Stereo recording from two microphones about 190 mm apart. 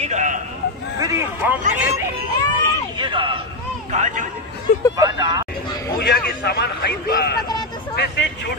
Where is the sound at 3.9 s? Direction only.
40° right (ahead or behind).